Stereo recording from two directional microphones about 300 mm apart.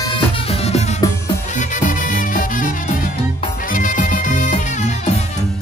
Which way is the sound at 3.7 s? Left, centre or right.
Left.